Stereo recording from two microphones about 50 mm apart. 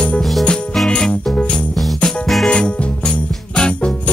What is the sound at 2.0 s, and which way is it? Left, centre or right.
Music, centre.